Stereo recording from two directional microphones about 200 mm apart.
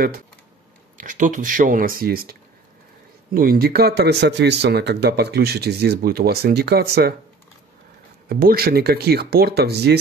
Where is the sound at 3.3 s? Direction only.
45° right (ahead or behind).